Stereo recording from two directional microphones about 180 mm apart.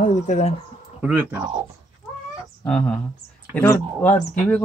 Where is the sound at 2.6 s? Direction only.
5° left (ahead or behind).